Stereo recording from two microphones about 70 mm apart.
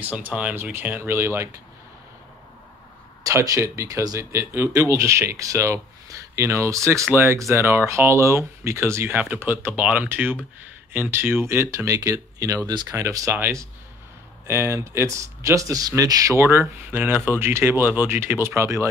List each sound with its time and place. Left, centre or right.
0.0 s speech: right
0.6 s speech: right
3.3 s speech: right
4.3 s speech: right
7.1 s speech: right
7.3 s speech: right
9.1 s speech: right
13.3 s speech: right
16.4 s speech: right